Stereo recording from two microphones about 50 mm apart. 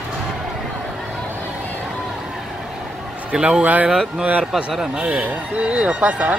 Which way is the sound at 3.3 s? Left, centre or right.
Centre.